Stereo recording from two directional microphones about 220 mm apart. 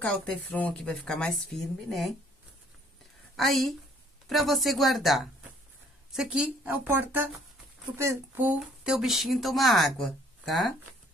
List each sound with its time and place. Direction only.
0.0 s speech: 5° left (ahead or behind)
3.3 s speech: centre (ahead or behind)